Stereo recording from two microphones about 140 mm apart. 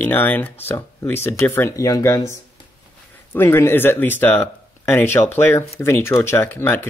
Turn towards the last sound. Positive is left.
turn(degrees=15)  # may be behind; listen again after turning